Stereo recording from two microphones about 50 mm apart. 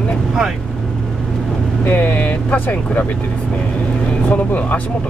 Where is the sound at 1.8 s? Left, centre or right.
Left.